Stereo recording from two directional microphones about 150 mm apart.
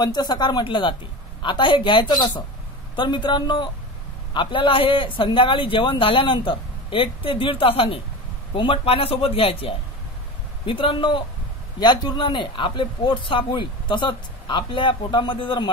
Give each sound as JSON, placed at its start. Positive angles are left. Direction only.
{"t": 0.0, "sound": "speech", "side_deg": 25}